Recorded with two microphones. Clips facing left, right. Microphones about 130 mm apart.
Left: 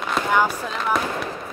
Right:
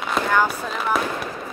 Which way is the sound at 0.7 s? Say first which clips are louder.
Even; 5° right (ahead or behind).